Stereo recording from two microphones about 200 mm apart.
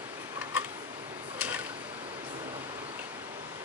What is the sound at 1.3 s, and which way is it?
Mechanisms, 10° right (ahead or behind).